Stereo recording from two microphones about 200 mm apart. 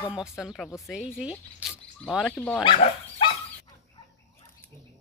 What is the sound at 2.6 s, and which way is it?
Speech, 25° left (ahead or behind).